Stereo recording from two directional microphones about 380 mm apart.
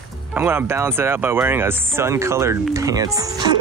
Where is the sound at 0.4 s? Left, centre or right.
Centre.